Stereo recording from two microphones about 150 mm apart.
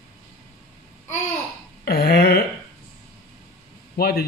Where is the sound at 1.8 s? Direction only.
90° left.